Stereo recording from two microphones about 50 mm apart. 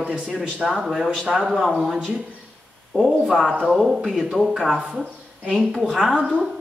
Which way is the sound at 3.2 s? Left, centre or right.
Centre.